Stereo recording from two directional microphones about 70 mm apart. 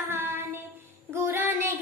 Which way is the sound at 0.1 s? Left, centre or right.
Right.